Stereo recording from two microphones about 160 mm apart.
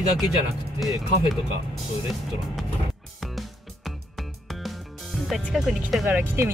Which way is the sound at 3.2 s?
Centre (ahead or behind).